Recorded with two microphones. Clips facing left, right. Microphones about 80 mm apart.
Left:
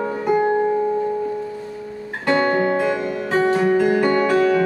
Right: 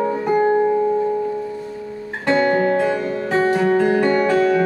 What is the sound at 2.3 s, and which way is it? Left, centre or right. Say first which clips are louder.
Music: right 1 dB; left.